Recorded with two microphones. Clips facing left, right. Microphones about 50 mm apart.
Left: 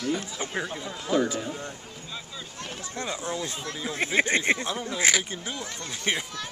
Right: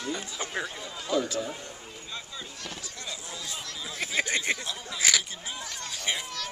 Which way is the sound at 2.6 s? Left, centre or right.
Left.